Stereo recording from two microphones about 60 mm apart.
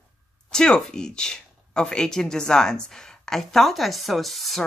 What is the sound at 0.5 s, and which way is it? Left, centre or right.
Speech, centre.